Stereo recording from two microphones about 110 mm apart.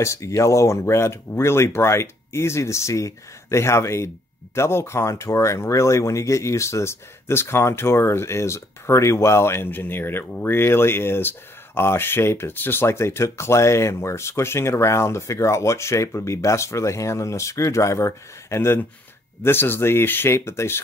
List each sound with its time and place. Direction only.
0.0 s speech: 30° left (ahead or behind)